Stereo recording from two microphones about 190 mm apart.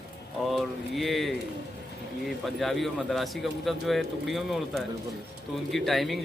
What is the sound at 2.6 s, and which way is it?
Speech, centre (ahead or behind).